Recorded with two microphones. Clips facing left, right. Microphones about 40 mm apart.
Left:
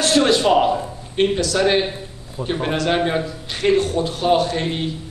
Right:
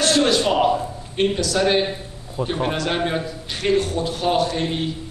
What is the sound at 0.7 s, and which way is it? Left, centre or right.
A man's voice, centre.